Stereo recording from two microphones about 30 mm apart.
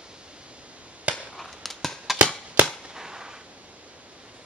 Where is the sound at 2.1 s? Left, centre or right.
Right.